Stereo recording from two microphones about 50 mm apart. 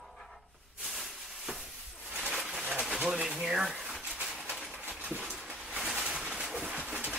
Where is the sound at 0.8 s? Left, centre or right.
Centre.